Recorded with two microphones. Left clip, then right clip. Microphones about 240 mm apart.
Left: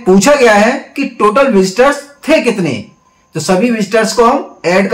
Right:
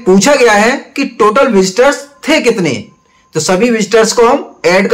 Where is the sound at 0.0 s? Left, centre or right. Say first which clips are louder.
Even; centre.